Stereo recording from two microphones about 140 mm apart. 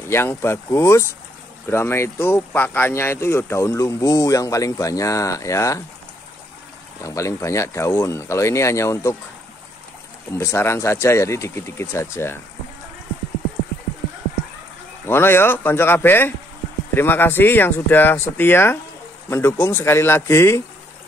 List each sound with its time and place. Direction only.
0.1 s speech: 15° left (ahead or behind)
7.0 s speech: 20° left (ahead or behind)
10.3 s speech: 20° left (ahead or behind)
15.0 s speech: 15° left (ahead or behind)